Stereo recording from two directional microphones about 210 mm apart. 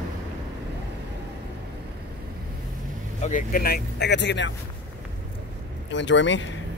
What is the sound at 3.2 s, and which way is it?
Speech, 35° left (ahead or behind).